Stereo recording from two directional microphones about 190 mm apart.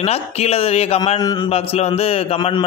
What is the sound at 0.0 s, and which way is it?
Speech, 35° left (ahead or behind).